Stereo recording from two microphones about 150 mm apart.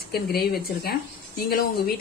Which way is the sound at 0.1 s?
90° left.